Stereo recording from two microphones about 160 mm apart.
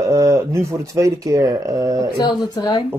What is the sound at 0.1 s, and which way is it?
Speech, 20° right (ahead or behind).